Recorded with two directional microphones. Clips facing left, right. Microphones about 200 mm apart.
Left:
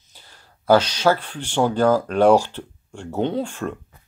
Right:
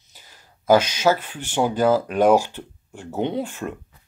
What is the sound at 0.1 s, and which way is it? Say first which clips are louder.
Speech: left 1 dB; 10° right (ahead or behind).